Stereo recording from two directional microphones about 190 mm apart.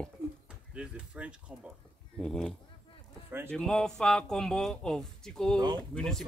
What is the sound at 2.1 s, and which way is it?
Speech, 5° left (ahead or behind).